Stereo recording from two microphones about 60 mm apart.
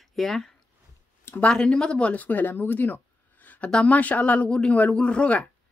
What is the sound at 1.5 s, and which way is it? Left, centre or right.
Speech, centre.